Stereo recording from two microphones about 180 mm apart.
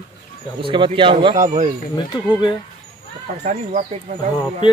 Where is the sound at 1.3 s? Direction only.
45° right (ahead or behind).